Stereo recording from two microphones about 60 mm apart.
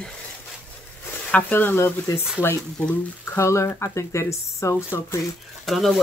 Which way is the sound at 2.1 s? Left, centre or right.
Left.